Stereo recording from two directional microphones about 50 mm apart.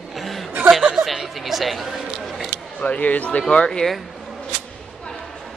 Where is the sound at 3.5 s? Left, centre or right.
Centre.